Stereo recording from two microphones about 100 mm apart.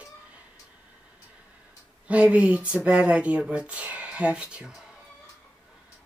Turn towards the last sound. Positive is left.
turn(degrees=-10)  # may be behind; listen again after turning